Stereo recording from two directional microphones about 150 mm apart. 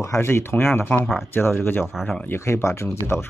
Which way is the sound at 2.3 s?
20° left (ahead or behind).